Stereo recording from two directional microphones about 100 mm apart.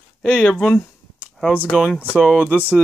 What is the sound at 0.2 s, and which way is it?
Speech, 10° left (ahead or behind).